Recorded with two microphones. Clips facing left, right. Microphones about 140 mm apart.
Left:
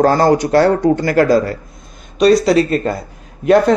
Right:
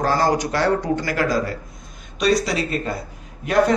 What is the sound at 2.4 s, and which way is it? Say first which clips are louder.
Speech: left 11 dB; 45° left (ahead or behind).